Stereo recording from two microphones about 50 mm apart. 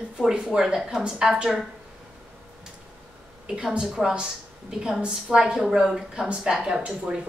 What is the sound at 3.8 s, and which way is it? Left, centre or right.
A woman's voice, centre.